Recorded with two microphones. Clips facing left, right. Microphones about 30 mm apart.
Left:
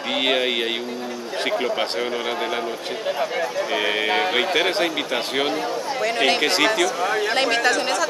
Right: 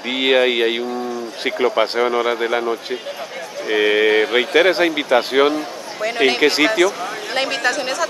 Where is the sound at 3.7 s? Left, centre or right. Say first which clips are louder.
Right 10 dB; centre.